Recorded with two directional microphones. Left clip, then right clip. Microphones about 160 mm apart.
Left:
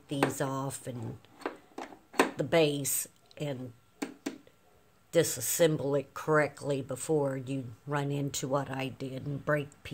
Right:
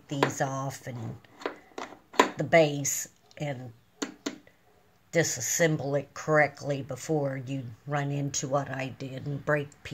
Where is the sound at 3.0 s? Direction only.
30° left (ahead or behind).